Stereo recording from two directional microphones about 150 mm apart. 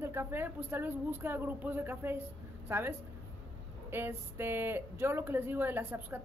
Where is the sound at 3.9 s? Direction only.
15° right (ahead or behind).